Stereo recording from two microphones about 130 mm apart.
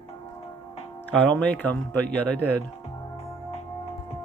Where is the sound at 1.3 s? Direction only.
10° left (ahead or behind).